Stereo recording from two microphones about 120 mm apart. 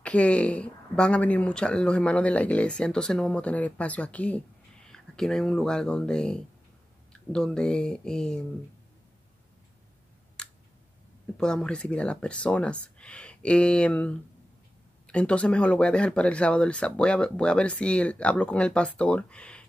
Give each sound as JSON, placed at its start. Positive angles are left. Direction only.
{"t": 0.0, "sound": "speech", "side_deg": 10}
{"t": 10.4, "sound": "a sound", "side_deg": 5}
{"t": 11.3, "sound": "speech", "side_deg": 5}